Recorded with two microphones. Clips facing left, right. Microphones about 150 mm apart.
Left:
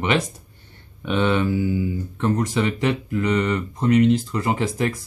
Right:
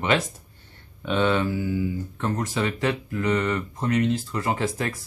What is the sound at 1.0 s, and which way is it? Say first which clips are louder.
Speech: left 2 dB; 15° left (ahead or behind).